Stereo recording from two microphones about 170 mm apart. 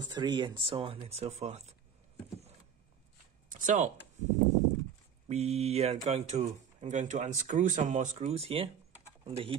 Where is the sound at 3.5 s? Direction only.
45° right (ahead or behind).